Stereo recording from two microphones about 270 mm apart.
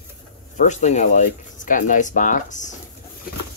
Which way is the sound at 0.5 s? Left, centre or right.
Left.